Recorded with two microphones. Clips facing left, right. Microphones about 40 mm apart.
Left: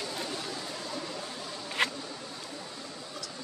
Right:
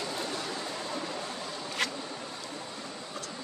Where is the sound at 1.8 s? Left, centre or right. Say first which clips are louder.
Left 3 dB; left.